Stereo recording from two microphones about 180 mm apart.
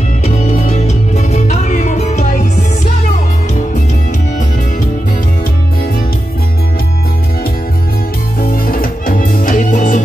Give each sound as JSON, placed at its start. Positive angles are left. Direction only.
{"t": 0.2, "sound": "music", "side_deg": 35}
{"t": 8.4, "sound": "music", "side_deg": 55}